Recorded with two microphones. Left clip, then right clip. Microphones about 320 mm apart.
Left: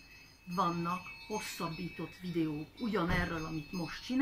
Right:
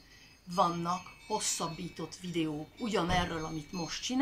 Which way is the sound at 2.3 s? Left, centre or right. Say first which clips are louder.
Right 1 dB; centre.